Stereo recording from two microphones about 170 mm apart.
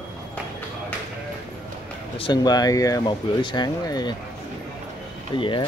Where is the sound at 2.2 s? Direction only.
25° left (ahead or behind).